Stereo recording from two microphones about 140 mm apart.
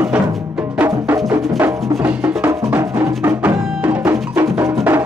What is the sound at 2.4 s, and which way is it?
Music, 20° right (ahead or behind).